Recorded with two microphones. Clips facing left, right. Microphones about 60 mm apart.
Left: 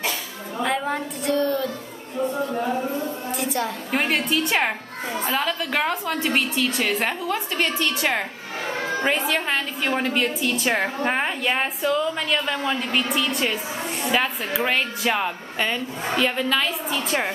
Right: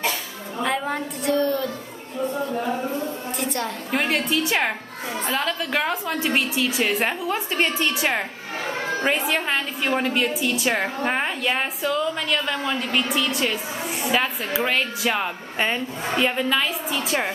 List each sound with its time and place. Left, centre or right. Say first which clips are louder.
0.6 s a sound: even; centre
2.3 s a woman's voice: right 1 dB; centre
8.1 s a woman's voice: even; centre
15.5 s speech: right 4 dB; centre
16.3 s a woman's voice: even; centre